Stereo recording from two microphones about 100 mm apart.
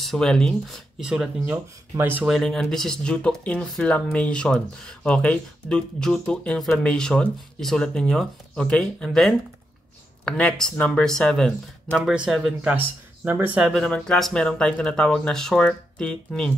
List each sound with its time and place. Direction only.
0.0 s speech: 5° left (ahead or behind)
1.0 s speech: 5° right (ahead or behind)
1.4 s speech: 20° right (ahead or behind)
2.2 s speech: centre (ahead or behind)
12.0 s speech: 10° right (ahead or behind)
13.2 s speech: 20° right (ahead or behind)
13.7 s speech: 10° left (ahead or behind)